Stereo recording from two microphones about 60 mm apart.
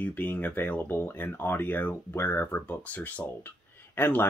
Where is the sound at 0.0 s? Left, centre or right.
Left.